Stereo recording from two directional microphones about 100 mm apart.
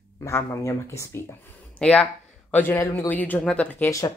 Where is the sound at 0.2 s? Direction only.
25° left (ahead or behind).